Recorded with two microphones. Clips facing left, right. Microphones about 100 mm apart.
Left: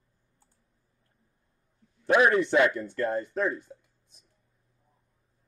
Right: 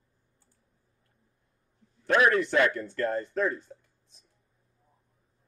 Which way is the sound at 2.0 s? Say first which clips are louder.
Left 2 dB; 15° left (ahead or behind).